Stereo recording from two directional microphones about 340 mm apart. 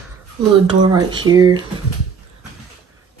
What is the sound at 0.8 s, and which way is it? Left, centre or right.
Speech, centre.